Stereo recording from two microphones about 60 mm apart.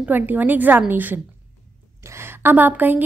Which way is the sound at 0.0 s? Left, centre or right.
Right.